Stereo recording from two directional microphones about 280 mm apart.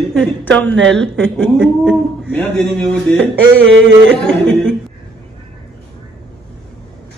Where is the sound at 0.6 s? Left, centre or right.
Right.